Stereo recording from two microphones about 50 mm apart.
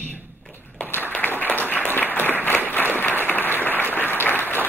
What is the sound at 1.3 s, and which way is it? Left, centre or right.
Applause, left.